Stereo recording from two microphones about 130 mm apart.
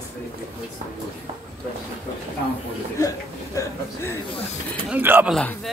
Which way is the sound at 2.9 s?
25° left (ahead or behind).